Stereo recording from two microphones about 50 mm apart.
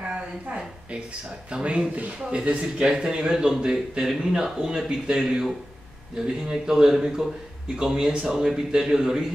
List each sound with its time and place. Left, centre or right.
1.5 s a man's voice: right